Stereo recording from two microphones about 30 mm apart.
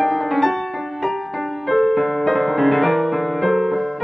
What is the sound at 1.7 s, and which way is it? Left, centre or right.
Music, centre.